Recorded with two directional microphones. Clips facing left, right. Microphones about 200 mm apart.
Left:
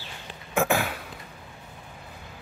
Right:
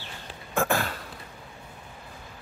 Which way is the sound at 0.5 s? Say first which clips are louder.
Left 2 dB; 10° left (ahead or behind).